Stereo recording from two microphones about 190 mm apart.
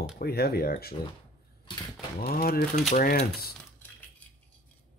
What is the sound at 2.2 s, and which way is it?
Speech, 50° left (ahead or behind).